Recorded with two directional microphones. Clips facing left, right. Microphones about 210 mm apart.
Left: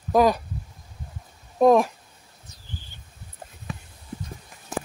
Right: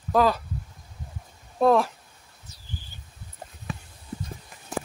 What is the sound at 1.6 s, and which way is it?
Speech, 15° left (ahead or behind).